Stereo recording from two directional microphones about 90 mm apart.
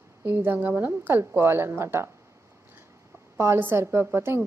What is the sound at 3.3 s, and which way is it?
A woman's voice, 30° right (ahead or behind).